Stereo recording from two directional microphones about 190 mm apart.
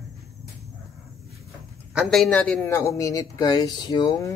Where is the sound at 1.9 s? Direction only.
Centre (ahead or behind); by 4.3 s 20° left (ahead or behind).